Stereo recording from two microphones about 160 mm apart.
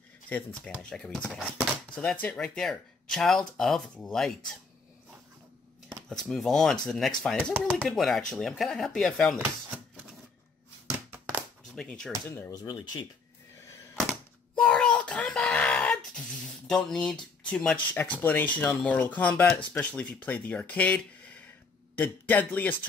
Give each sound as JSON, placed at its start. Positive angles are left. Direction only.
{"t": 0.3, "sound": "speech", "side_deg": 10}
{"t": 6.2, "sound": "speech", "side_deg": 0}
{"t": 11.7, "sound": "speech", "side_deg": 5}
{"t": 12.6, "sound": "speech", "side_deg": 25}
{"t": 14.6, "sound": "a sound", "side_deg": 5}
{"t": 16.6, "sound": "speech", "side_deg": 5}